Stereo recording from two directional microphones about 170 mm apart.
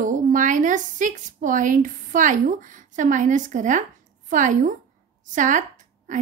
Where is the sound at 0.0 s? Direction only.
50° right (ahead or behind).